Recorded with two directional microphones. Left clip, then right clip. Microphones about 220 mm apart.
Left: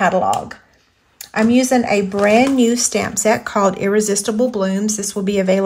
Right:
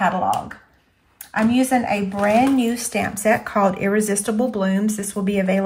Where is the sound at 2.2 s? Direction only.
20° left (ahead or behind).